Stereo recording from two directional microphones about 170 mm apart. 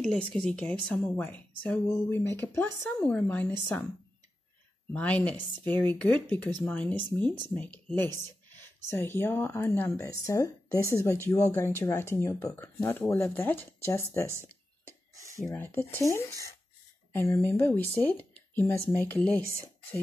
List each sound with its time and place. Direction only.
0.0 s speech: 5° left (ahead or behind)
4.9 s speech: 10° left (ahead or behind)
15.4 s speech: 15° left (ahead or behind)